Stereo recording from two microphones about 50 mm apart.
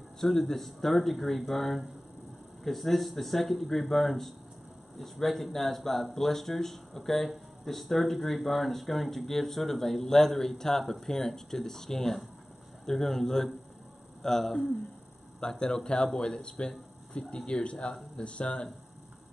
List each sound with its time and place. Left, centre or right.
0.2 s speech: centre